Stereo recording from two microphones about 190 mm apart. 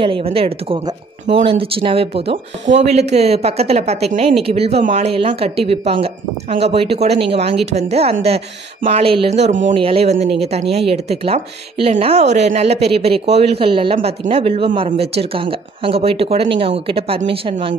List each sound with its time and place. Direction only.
0.0 s a woman's voice: 30° right (ahead or behind)